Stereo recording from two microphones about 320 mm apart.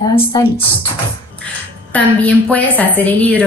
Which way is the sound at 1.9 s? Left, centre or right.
Centre.